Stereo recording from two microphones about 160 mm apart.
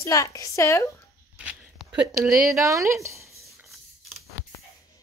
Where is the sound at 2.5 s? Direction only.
20° right (ahead or behind).